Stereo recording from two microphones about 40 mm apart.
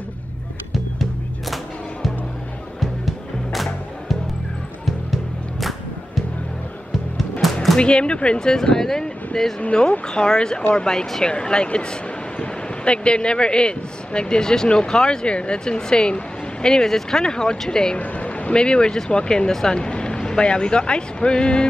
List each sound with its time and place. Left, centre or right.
3.5 s music: centre
7.4 s music: centre
7.8 s a man's voice: left
9.6 s a man's voice: left
17.9 s a sound: left
18.6 s a man's voice: left